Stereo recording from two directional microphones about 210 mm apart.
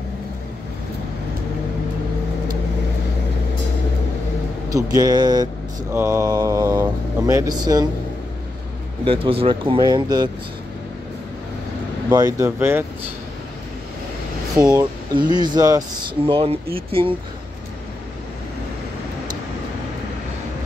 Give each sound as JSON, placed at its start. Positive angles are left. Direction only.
{"t": 4.6, "sound": "speech", "side_deg": -15}
{"t": 9.0, "sound": "speech", "side_deg": -25}
{"t": 12.1, "sound": "speech", "side_deg": -15}
{"t": 14.6, "sound": "speech", "side_deg": -15}